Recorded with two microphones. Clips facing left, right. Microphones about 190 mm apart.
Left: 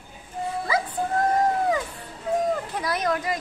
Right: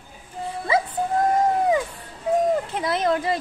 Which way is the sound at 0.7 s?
25° right (ahead or behind).